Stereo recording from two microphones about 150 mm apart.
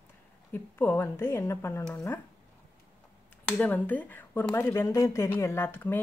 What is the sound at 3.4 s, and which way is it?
Speech, 10° left (ahead or behind).